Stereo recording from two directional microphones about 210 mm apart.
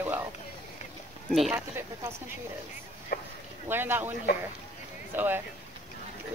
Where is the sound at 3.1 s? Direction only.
50° left (ahead or behind).